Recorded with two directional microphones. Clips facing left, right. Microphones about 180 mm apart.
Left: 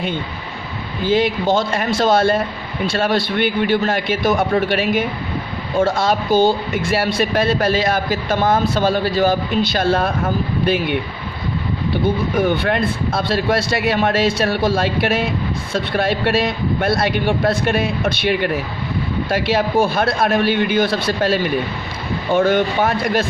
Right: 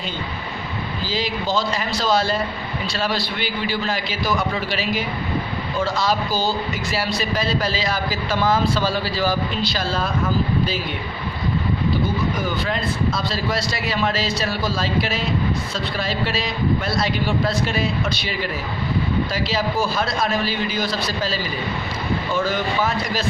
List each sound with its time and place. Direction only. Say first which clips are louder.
1.0 s a man's voice: left 9 dB; 55° left (ahead or behind)